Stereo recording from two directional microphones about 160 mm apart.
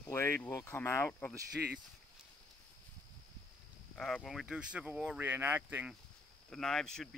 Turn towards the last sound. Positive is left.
turn(degrees=5)  # may be behind; listen again after turning